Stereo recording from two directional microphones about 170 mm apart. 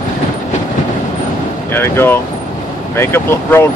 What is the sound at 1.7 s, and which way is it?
Speech, 15° left (ahead or behind).